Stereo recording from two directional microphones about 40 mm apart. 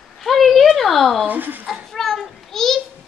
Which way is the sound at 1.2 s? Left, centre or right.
Right.